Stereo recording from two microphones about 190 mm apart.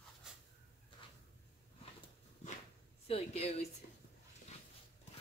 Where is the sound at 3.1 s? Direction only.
35° left (ahead or behind).